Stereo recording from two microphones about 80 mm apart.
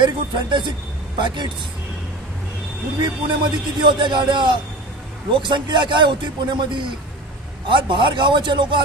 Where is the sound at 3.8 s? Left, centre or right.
Right.